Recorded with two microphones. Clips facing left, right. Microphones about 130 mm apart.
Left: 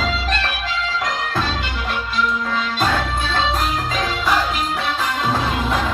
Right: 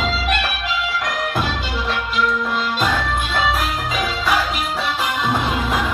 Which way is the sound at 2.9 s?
15° right (ahead or behind).